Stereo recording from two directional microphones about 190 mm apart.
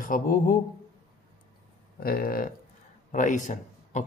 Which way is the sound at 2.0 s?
50° left (ahead or behind).